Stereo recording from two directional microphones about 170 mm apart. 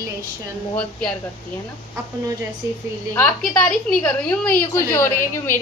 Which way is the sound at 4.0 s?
10° left (ahead or behind).